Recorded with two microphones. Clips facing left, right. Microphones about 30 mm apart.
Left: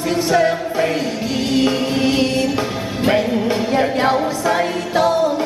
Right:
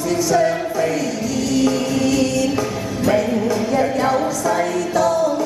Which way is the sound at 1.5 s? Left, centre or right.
Left.